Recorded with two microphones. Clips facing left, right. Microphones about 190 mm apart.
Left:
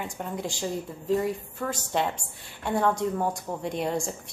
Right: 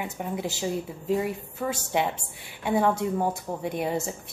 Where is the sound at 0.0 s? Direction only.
5° right (ahead or behind).